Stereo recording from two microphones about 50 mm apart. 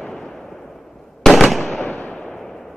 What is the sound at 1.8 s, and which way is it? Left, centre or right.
Fireworks, left.